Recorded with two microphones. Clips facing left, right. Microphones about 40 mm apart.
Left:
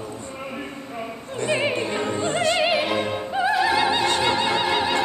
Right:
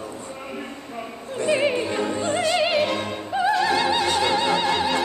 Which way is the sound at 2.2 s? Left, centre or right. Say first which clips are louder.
Left 1 dB; left.